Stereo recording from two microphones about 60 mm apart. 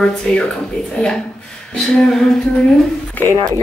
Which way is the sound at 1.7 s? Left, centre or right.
Centre.